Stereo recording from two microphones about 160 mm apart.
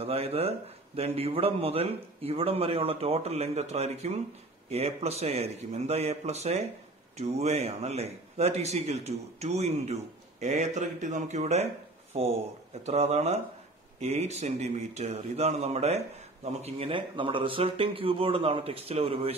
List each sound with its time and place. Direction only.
0.0 s a man's voice: 40° right (ahead or behind)